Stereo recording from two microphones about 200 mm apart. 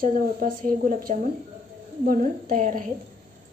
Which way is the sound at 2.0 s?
45° right (ahead or behind).